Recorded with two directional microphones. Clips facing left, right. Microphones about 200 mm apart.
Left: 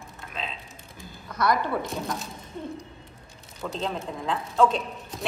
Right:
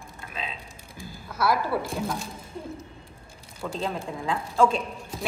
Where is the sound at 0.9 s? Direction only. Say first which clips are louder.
Even; 5° right (ahead or behind).